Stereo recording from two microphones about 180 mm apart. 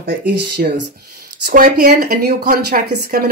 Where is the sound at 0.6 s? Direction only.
55° right (ahead or behind).